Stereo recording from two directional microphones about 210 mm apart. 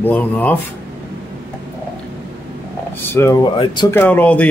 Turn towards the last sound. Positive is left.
turn(degrees=5)  # may be behind; listen again after turning